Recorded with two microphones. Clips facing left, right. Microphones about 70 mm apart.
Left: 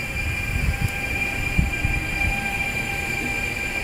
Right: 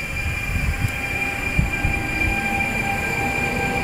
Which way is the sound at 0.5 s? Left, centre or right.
Centre.